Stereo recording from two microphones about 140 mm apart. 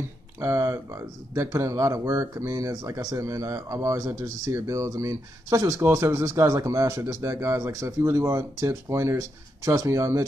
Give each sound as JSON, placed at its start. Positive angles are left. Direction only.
{"t": 0.4, "sound": "speech", "side_deg": -20}